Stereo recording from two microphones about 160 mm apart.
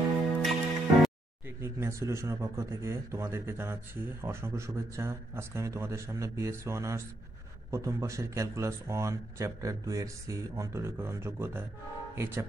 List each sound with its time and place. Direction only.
0.4 s music: centre (ahead or behind)
1.6 s a man's voice: 15° right (ahead or behind)